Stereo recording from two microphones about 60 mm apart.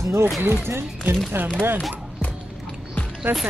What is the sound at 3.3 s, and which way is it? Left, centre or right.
Speech, right.